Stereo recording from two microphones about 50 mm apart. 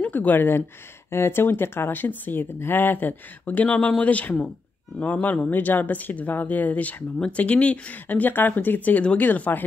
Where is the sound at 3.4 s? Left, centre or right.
Left.